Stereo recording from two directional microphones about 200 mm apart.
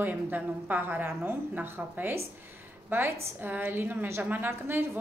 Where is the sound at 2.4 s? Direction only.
10° right (ahead or behind).